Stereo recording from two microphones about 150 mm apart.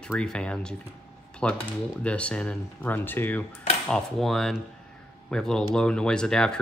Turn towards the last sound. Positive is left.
turn(degrees=5)  # may be behind; listen again after turning